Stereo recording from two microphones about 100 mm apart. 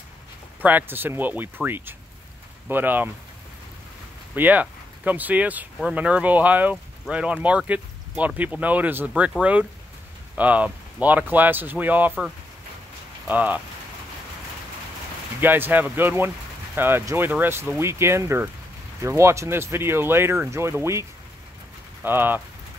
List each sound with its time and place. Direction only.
0.6 s speech: 15° right (ahead or behind)
4.4 s speech: 15° right (ahead or behind)
13.3 s speech: 15° right (ahead or behind)
15.4 s speech: 20° right (ahead or behind)
22.0 s speech: 20° right (ahead or behind)